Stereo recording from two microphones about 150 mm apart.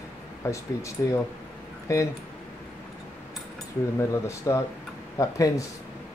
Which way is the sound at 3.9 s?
20° left (ahead or behind).